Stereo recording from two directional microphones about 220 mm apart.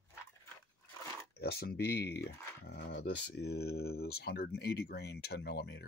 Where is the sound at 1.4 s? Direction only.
45° left (ahead or behind).